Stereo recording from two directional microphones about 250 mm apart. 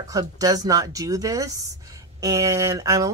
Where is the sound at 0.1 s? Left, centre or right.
Centre.